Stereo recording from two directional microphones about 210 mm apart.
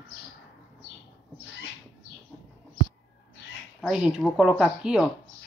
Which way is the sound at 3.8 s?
5° right (ahead or behind).